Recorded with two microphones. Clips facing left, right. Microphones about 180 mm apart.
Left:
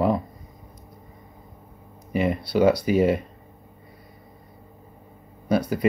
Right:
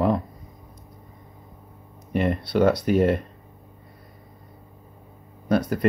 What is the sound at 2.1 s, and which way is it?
Speech, 5° left (ahead or behind).